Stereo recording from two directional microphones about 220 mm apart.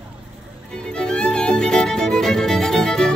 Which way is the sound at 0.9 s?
5° left (ahead or behind).